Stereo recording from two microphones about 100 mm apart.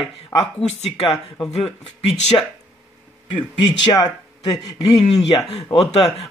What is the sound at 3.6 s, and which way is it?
Speech, 45° left (ahead or behind).